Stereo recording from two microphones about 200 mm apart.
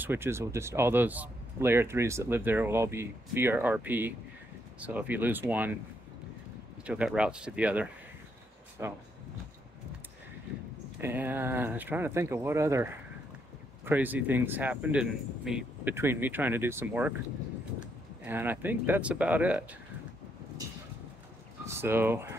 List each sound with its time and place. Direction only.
0.0 s speech: 10° right (ahead or behind)
6.9 s speech: 5° right (ahead or behind)
11.0 s speech: 10° right (ahead or behind)
21.6 s speech: 10° right (ahead or behind)